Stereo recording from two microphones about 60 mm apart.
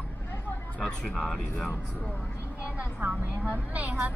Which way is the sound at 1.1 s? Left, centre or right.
Centre.